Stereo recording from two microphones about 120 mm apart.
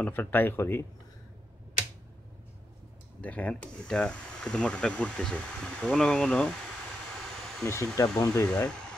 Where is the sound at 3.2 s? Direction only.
10° left (ahead or behind).